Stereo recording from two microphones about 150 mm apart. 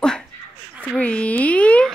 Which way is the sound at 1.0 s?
10° left (ahead or behind).